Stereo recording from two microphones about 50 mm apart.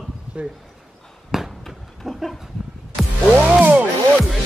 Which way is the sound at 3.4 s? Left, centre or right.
Right.